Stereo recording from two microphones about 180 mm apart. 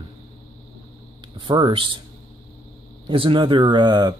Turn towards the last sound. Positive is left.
turn(degrees=-25)  # may be behind; listen again after turning